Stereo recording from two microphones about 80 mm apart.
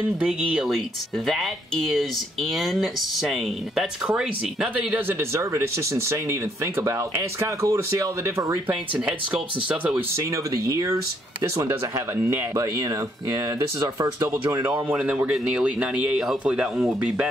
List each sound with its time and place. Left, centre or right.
0.2 s speech: centre
0.7 s speech: centre
5.3 s speech: right
8.6 s speech: centre
10.1 s speech: right
14.6 s speech: right